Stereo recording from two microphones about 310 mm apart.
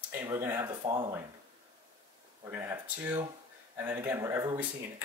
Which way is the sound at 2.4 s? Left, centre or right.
Centre.